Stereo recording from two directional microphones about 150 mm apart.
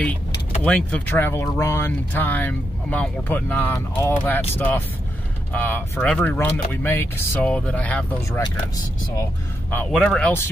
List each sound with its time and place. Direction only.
0.7 s speech: 10° left (ahead or behind)
9.7 s speech: 10° left (ahead or behind)